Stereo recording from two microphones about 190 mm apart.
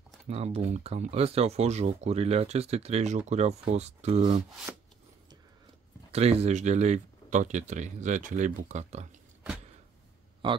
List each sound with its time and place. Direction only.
0.3 s speech: 35° right (ahead or behind)
4.7 s a sound: 5° right (ahead or behind)
6.1 s speech: 35° right (ahead or behind)